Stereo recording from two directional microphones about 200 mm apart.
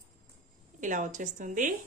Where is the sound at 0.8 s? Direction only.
40° right (ahead or behind).